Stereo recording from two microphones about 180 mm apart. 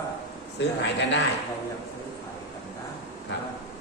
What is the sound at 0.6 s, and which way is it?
Speech, 80° left.